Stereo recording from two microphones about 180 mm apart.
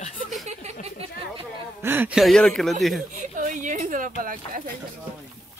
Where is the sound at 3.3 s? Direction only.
45° right (ahead or behind).